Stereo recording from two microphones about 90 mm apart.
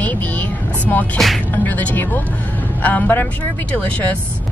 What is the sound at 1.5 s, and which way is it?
A woman's voice, 20° left (ahead or behind).